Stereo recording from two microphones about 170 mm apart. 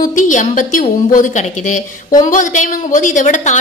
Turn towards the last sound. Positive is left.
turn(degrees=45)  # may be behind; listen again after turning